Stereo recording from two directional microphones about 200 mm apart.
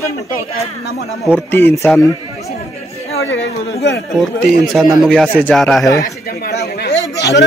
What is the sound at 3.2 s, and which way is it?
Speech, 70° left (ahead or behind).